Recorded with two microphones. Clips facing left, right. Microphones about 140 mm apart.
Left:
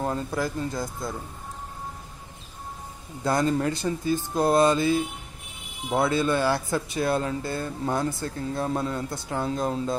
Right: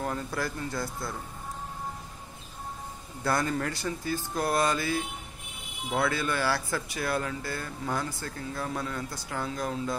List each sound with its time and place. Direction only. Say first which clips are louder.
0.0 s speech: left 4 dB; 25° left (ahead or behind)
3.3 s speech: left 5 dB; 20° left (ahead or behind)